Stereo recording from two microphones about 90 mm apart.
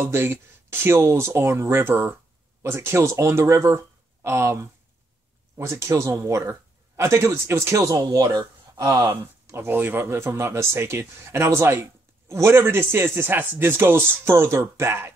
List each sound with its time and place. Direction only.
0.0 s a man's voice: 25° right (ahead or behind); by 9.0 s 40° right (ahead or behind)
9.0 s speech: 30° right (ahead or behind)